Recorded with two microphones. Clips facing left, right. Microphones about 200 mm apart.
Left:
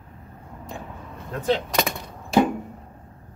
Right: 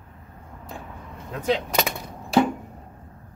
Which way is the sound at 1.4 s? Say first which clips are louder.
Even; 10° right (ahead or behind).